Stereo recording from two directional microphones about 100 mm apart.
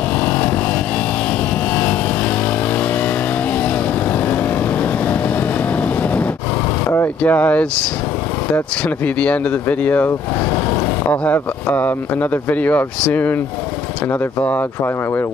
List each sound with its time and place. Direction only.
0.2 s vehicle: 15° left (ahead or behind)
6.9 s speech: 20° left (ahead or behind)
11.2 s speech: 15° left (ahead or behind)